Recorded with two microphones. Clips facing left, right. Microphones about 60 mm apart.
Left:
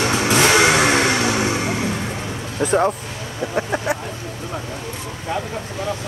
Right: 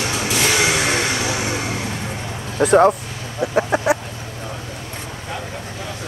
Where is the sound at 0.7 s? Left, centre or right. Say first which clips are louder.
Left 4 dB; left.